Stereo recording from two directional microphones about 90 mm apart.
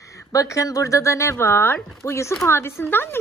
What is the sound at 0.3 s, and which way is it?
Speech, 35° left (ahead or behind).